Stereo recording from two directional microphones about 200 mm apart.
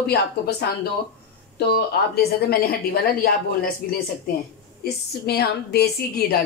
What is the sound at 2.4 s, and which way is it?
Speech, 50° left (ahead or behind).